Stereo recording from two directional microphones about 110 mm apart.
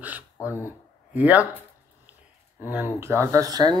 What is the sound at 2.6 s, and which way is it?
Speech, 20° right (ahead or behind).